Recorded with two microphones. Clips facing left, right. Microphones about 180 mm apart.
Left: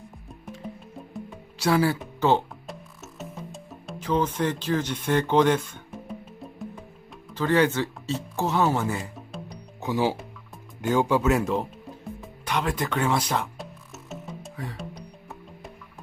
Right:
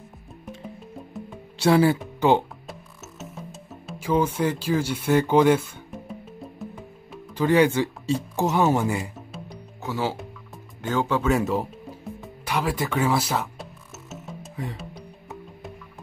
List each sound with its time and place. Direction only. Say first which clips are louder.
1.6 s speech: right 4 dB; 25° right (ahead or behind)
2.1 s music: right 1 dB; 15° right (ahead or behind)
2.6 s music: left 1 dB; centre (ahead or behind)
7.3 s speech: right 3 dB; 10° right (ahead or behind)
9.1 s music: even; centre (ahead or behind)
9.8 s speech: left 3 dB; 15° left (ahead or behind)
11.2 s speech: right 1 dB; centre (ahead or behind)
12.2 s music: right 1 dB; 5° right (ahead or behind)